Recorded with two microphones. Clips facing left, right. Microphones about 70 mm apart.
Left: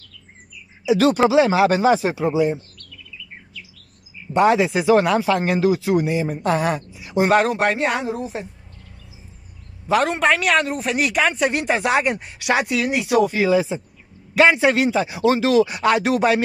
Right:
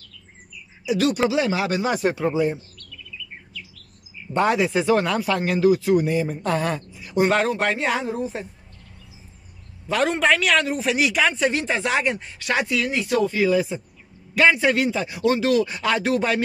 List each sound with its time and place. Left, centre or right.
0.8 s speech: left
4.3 s speech: centre
6.9 s a sound: centre
7.3 s speech: centre
9.9 s speech: centre
13.3 s speech: left